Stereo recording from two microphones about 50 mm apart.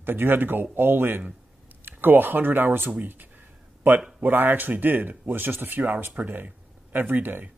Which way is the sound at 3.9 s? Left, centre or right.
Right.